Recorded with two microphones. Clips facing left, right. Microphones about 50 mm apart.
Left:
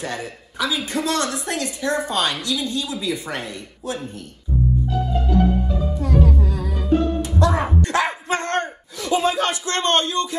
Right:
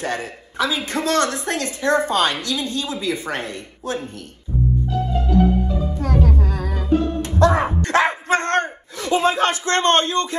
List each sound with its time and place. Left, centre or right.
0.0 s a woman's voice: right
5.9 s music: right
7.3 s a sound: right